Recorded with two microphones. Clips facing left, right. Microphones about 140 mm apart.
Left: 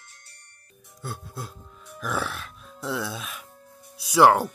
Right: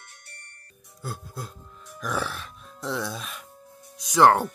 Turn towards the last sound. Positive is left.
turn(degrees=5)  # may be behind; listen again after turning